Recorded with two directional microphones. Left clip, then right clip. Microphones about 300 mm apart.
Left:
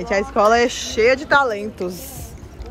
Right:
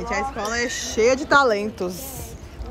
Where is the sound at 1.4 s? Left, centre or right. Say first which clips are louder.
Right 1 dB; right.